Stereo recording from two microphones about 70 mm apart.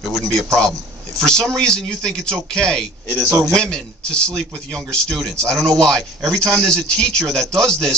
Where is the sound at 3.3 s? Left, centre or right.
Right.